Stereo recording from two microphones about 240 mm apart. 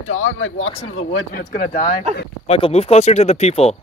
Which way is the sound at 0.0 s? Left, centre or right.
Left.